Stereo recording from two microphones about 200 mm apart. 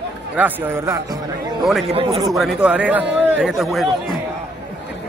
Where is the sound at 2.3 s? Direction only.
Centre (ahead or behind).